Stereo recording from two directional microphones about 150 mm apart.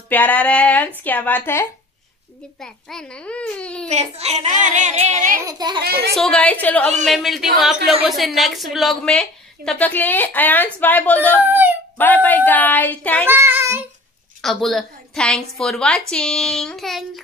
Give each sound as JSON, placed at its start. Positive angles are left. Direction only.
{"t": 0.1, "sound": "a woman's voice", "side_deg": 10}
{"t": 2.6, "sound": "a woman's voice", "side_deg": 5}
{"t": 3.9, "sound": "a woman's voice", "side_deg": -45}
{"t": 5.4, "sound": "a child's voice", "side_deg": -25}
{"t": 5.8, "sound": "a woman's voice", "side_deg": -90}
{"t": 6.1, "sound": "a woman's voice", "side_deg": 5}
{"t": 7.1, "sound": "a woman's voice", "side_deg": 0}
{"t": 11.4, "sound": "speech", "side_deg": -15}
{"t": 12.0, "sound": "a woman's voice", "side_deg": 10}
{"t": 13.3, "sound": "child singing", "side_deg": -15}
{"t": 14.4, "sound": "a woman's voice", "side_deg": 0}